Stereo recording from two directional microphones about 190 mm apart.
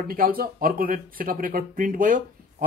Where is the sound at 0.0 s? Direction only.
50° right (ahead or behind).